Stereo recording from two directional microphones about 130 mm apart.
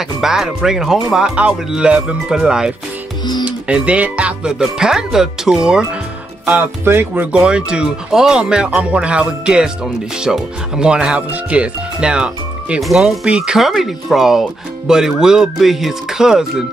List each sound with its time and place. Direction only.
0.2 s speech: 5° right (ahead or behind)